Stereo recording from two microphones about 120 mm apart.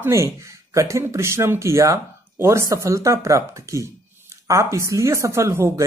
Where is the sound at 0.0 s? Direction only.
25° right (ahead or behind).